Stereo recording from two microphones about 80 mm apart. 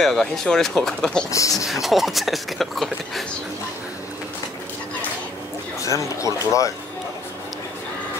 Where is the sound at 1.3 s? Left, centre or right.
Left.